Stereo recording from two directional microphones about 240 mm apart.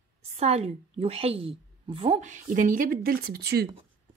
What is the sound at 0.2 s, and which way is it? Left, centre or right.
A woman's voice, right.